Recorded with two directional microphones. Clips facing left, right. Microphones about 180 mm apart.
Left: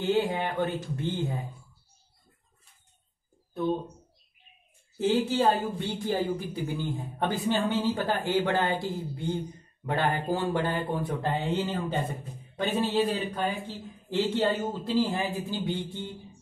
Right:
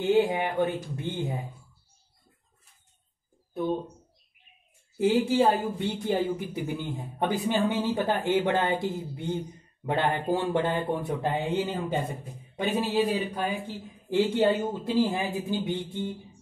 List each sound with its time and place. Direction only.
0.0 s a man's voice: 15° right (ahead or behind)
4.9 s a man's voice: 15° right (ahead or behind)